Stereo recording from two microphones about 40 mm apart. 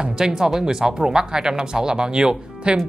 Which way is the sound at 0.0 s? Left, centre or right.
Centre.